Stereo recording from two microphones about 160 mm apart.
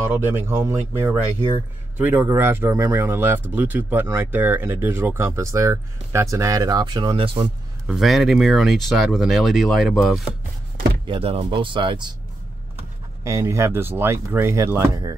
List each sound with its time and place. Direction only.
0.0 s speech: 15° right (ahead or behind); by 7.4 s 35° right (ahead or behind)
7.9 s speech: centre (ahead or behind)
11.1 s speech: 35° right (ahead or behind)
13.2 s speech: 20° right (ahead or behind)